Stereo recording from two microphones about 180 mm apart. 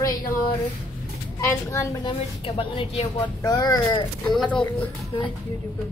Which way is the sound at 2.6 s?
30° left (ahead or behind).